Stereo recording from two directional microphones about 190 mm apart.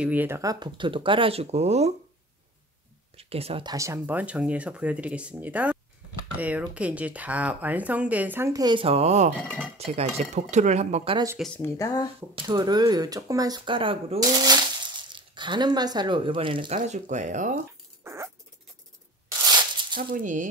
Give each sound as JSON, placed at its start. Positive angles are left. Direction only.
{"t": 0.0, "sound": "speech", "side_deg": -10}
{"t": 3.2, "sound": "speech", "side_deg": -30}
{"t": 3.7, "sound": "speech", "side_deg": -15}
{"t": 11.3, "sound": "speech", "side_deg": 5}
{"t": 12.4, "sound": "speech", "side_deg": -25}
{"t": 16.7, "sound": "speech", "side_deg": -40}
{"t": 18.0, "sound": "dog", "side_deg": -15}
{"t": 19.4, "sound": "a sound", "side_deg": -25}
{"t": 20.0, "sound": "speech", "side_deg": -45}